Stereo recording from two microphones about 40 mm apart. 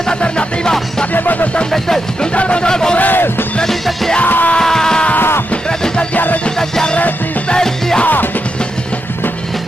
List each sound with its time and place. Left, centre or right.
0.1 s music: left
1.1 s music: left
2.3 s music: left
2.7 s a sound: centre
3.0 s music: left
3.6 s music: centre
4.3 s music: left
4.6 s a sound: centre
6.1 s music: left
6.6 s music: centre